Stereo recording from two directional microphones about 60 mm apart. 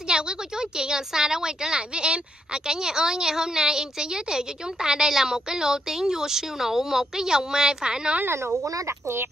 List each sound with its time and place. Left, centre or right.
0.1 s a woman's voice: centre
8.3 s speech: right
8.6 s speech: right
9.0 s speech: right